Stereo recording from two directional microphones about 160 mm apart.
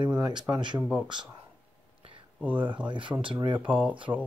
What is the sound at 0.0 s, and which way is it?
Speech, 25° right (ahead or behind).